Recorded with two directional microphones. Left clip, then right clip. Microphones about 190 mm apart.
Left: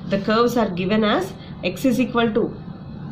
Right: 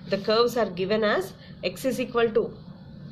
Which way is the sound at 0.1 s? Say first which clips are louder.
Left 4 dB; 30° right (ahead or behind).